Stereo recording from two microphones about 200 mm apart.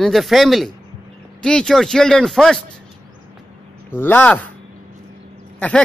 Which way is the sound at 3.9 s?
10° left (ahead or behind).